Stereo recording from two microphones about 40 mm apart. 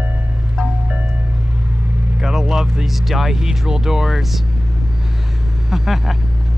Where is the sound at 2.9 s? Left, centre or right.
Centre.